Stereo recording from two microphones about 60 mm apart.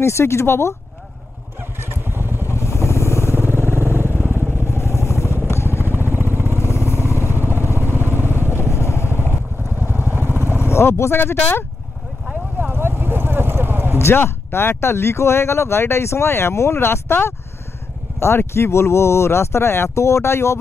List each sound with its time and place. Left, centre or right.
0.0 s speech: left
1.8 s motorcycle: right
2.5 s vehicle: left
3.3 s vehicle: right
4.6 s vehicle: left
5.9 s vehicle: right
8.6 s vehicle: left
9.3 s vehicle: right
10.7 s speech: left
11.3 s speech: left
12.7 s vehicle: right
13.9 s speech: left
18.5 s speech: left